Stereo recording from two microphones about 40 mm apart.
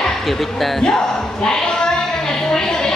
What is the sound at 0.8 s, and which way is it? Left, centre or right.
Music, centre.